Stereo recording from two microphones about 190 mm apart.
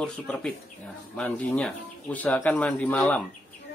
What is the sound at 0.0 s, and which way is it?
Speech, 5° left (ahead or behind).